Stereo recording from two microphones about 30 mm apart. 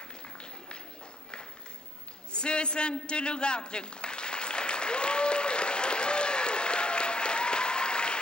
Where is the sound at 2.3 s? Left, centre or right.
Left.